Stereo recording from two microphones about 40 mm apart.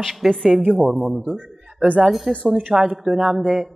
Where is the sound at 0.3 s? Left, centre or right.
Centre.